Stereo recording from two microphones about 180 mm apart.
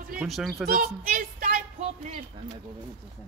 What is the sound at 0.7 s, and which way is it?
Speech, 50° right (ahead or behind).